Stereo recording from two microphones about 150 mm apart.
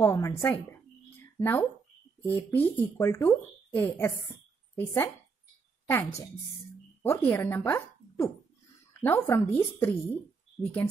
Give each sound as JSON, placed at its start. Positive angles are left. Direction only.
{"t": 0.0, "sound": "a woman's voice", "side_deg": 15}